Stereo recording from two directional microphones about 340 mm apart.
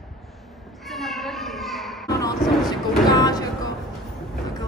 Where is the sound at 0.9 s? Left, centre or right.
Centre.